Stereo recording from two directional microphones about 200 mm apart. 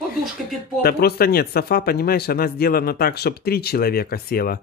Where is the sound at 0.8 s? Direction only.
50° left (ahead or behind).